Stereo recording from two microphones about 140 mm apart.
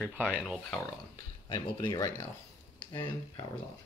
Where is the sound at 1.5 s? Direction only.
30° left (ahead or behind).